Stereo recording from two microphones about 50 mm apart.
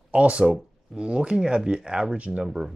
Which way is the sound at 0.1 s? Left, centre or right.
Right.